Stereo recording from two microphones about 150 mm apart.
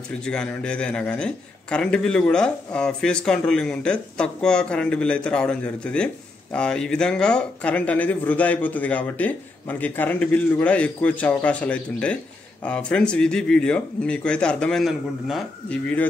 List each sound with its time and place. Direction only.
0.1 s a man's voice: 5° left (ahead or behind)